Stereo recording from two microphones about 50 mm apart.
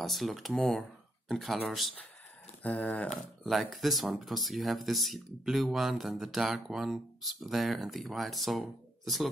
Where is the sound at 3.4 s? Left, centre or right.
Centre.